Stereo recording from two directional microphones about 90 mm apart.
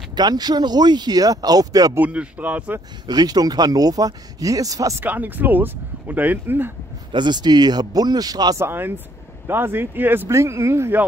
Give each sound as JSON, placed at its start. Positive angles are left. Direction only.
{"t": 0.1, "sound": "speech", "side_deg": -50}
{"t": 2.0, "sound": "speech", "side_deg": -15}
{"t": 3.1, "sound": "speech", "side_deg": -45}
{"t": 5.0, "sound": "speech", "side_deg": -20}
{"t": 7.1, "sound": "speech", "side_deg": -55}
{"t": 8.5, "sound": "speech", "side_deg": -25}